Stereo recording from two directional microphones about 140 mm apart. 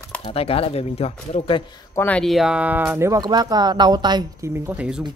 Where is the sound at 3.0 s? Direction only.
25° right (ahead or behind).